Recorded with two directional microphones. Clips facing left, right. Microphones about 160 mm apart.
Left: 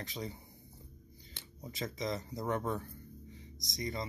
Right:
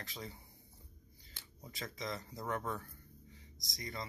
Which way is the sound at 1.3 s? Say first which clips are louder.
Left 6 dB; 20° left (ahead or behind).